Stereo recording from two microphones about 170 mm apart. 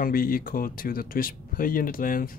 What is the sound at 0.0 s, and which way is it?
Speech, 60° left (ahead or behind).